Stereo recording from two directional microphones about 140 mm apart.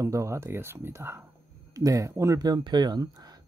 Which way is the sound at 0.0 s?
20° right (ahead or behind).